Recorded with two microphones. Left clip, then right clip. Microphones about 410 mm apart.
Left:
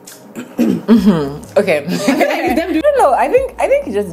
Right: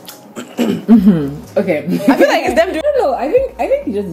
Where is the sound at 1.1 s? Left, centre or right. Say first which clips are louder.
Left 3 dB; left.